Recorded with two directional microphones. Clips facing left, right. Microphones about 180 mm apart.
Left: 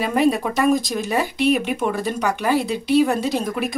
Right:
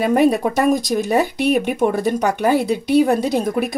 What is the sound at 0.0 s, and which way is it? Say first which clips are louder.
Speech: right 4 dB; 50° right (ahead or behind).